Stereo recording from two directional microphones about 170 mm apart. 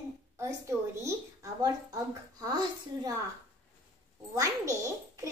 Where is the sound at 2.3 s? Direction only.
25° right (ahead or behind).